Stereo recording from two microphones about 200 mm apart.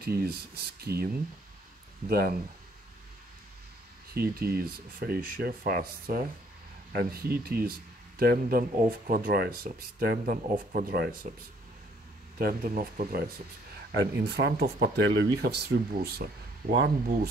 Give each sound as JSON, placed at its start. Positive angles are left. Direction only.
{"t": 0.2, "sound": "speech", "side_deg": -50}
{"t": 2.0, "sound": "speech", "side_deg": -50}
{"t": 4.1, "sound": "speech", "side_deg": -50}
{"t": 12.4, "sound": "speech", "side_deg": -45}
{"t": 13.9, "sound": "speech", "side_deg": -55}